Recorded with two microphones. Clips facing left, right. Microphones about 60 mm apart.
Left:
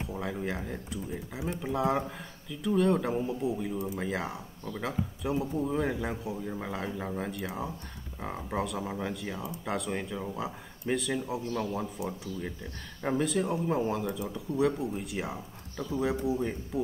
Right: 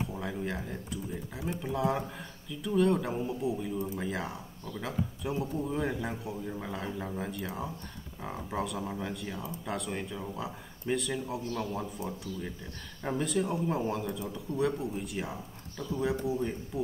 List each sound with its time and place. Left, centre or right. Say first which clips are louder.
0.1 s a sound: left 1 dB; centre
1.6 s speech: left 2 dB; centre
3.6 s speech: left 1 dB; centre
12.0 s speech: left 2 dB; centre
13.1 s speech: left 2 dB; centre